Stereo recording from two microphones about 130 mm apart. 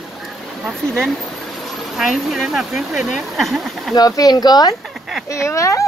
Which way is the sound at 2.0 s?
Centre (ahead or behind).